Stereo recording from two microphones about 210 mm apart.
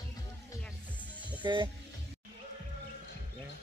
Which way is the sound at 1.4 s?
20° right (ahead or behind).